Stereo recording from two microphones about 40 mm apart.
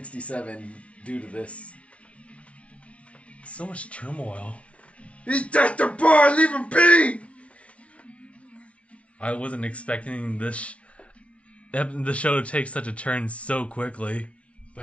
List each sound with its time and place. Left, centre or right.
0.0 s speech: left
3.4 s speech: left
9.2 s speech: left